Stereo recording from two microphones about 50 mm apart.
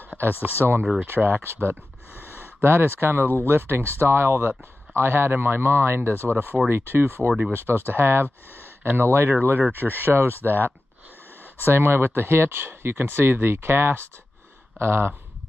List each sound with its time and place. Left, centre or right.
0.2 s speech: right
0.6 s speech: right
1.0 s speech: right
9.6 s speech: right
9.9 s speech: right
11.6 s speech: right